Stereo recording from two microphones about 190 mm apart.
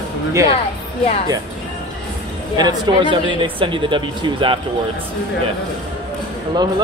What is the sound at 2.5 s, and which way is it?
Speech, 20° right (ahead or behind).